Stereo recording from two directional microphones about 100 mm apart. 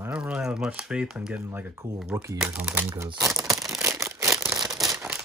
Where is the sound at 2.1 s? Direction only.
30° right (ahead or behind).